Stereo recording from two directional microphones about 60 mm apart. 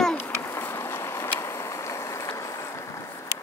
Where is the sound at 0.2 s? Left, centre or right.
Left.